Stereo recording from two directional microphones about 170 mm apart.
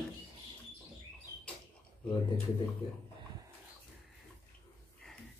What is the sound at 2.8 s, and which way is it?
Speech, 30° left (ahead or behind).